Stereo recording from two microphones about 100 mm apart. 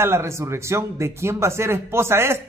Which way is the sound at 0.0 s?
25° right (ahead or behind).